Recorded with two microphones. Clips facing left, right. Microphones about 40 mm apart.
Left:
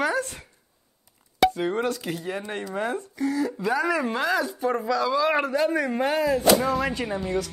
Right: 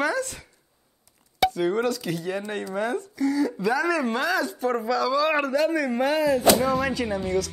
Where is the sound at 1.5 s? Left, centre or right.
Centre.